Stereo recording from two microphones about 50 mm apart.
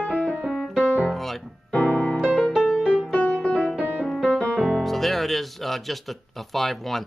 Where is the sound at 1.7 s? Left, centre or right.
Left.